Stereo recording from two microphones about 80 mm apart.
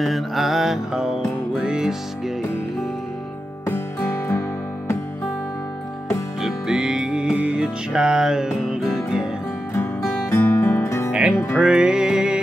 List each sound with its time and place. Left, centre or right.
0.0 s music: centre
3.6 s music: left
6.4 s music: centre
10.3 s music: left
11.1 s music: centre